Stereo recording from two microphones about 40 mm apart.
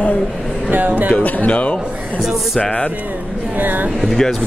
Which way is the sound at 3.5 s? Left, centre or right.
Right.